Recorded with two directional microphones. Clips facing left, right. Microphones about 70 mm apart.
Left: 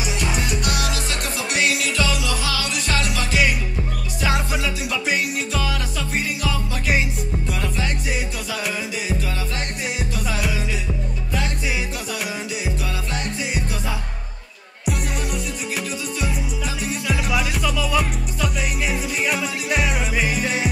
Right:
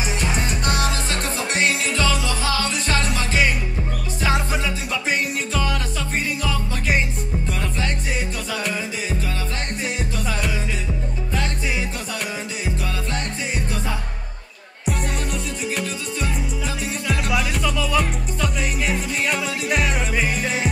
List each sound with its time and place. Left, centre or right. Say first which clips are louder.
0.0 s music: even; right
4.2 s music: even; centre
9.9 s music: even; centre
12.6 s music: even; centre
16.2 s music: right 1 dB; centre